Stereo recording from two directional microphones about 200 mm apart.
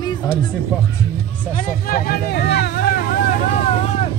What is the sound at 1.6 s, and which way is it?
Vehicle, 45° left (ahead or behind).